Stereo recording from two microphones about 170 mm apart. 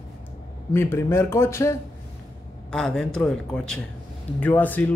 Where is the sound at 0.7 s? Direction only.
15° left (ahead or behind).